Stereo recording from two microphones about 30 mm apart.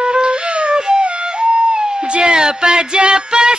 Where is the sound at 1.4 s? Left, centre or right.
Right.